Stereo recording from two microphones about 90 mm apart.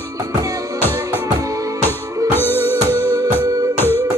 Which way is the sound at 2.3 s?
25° left (ahead or behind).